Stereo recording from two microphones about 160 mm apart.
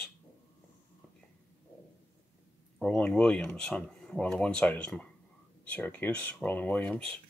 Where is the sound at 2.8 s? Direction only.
5° left (ahead or behind).